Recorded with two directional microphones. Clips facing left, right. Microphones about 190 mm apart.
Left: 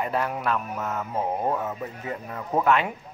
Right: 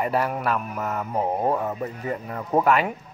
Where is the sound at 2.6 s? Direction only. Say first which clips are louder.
Even; 5° right (ahead or behind).